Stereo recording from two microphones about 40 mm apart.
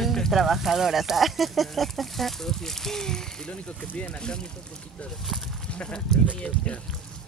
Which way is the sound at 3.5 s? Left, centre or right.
Left.